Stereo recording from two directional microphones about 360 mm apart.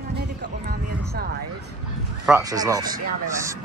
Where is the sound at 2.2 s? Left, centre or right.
Centre.